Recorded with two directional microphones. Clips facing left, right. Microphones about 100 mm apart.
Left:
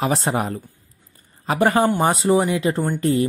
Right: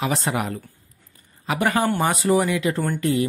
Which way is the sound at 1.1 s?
35° left (ahead or behind).